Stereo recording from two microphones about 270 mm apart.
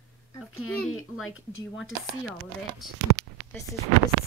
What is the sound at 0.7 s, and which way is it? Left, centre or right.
Speech, centre.